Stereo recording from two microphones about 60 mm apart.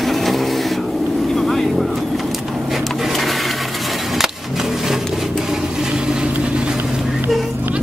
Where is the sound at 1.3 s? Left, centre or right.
Centre.